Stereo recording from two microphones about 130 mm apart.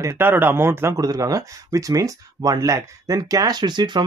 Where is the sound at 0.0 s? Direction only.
20° right (ahead or behind).